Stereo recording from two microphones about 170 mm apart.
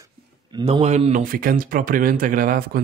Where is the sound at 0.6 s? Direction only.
40° right (ahead or behind).